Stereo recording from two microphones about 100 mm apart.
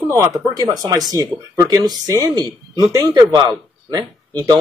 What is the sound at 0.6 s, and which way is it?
A man's voice, 40° right (ahead or behind).